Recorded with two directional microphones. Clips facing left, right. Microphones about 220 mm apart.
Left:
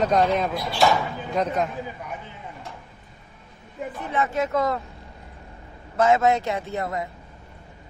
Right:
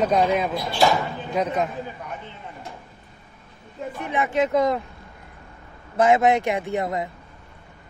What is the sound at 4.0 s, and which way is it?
Speech, 15° right (ahead or behind).